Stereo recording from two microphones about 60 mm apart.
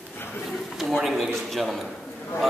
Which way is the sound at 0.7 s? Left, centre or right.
Centre.